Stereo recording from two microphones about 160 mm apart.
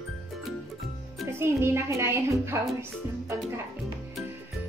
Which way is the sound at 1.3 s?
15° right (ahead or behind).